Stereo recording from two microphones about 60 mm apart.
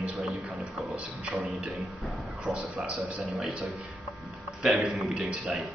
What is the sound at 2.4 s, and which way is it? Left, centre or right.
Speech, centre.